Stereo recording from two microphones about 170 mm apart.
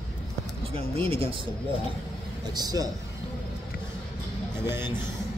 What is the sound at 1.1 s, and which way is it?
Speech, 30° right (ahead or behind).